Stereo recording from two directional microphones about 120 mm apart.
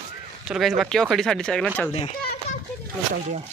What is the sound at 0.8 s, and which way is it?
Speech, 5° left (ahead or behind).